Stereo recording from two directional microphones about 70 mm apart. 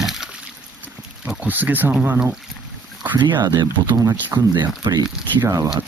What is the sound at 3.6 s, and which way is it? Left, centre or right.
Speech, right.